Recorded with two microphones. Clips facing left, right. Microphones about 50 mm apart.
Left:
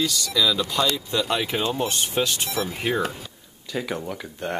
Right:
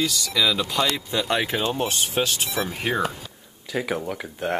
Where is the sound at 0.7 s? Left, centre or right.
Centre.